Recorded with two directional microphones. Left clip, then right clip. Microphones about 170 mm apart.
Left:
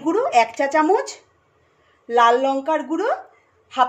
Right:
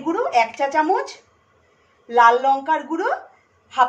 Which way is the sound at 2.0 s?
50° left (ahead or behind).